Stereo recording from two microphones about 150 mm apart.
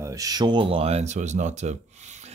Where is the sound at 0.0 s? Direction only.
20° right (ahead or behind).